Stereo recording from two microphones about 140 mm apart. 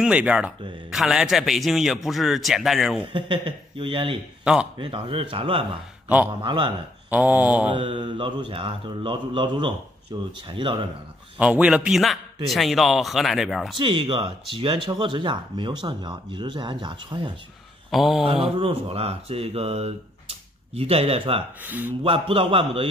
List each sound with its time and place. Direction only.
0.0 s a man's voice: 10° right (ahead or behind)
3.1 s speech: 35° right (ahead or behind)
7.1 s a man's voice: 10° right (ahead or behind)
7.7 s speech: 35° right (ahead or behind)
11.3 s a man's voice: 10° right (ahead or behind)
13.7 s speech: 35° right (ahead or behind)
17.9 s speech: centre (ahead or behind)
18.2 s speech: 45° right (ahead or behind)
21.6 s a man's voice: 15° right (ahead or behind)
22.0 s speech: 40° right (ahead or behind)